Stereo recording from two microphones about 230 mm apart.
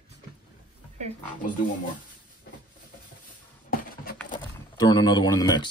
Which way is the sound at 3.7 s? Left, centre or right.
Left.